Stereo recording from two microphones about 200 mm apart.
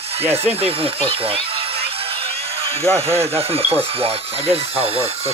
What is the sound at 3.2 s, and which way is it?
Speech, 30° right (ahead or behind).